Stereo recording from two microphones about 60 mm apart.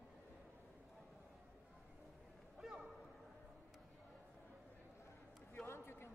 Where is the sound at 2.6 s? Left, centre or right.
Centre.